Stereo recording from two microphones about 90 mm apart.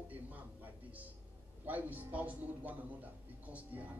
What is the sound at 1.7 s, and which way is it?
Speech, 20° right (ahead or behind).